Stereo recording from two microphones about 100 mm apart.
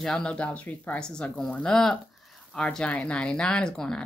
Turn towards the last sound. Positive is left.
turn(degrees=5)  # may be behind; listen again after turning